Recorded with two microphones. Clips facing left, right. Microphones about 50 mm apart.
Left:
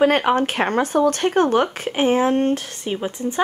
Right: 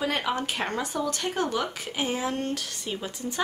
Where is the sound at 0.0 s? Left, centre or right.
Left.